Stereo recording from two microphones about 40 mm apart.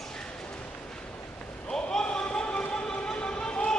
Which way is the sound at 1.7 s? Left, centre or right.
Centre.